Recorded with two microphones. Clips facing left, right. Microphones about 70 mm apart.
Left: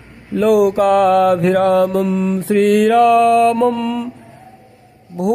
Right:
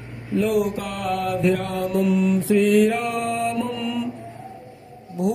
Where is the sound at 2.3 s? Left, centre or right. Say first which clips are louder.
Left 5 dB; left.